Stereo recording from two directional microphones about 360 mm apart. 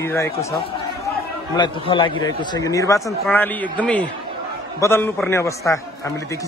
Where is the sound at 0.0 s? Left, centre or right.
Centre.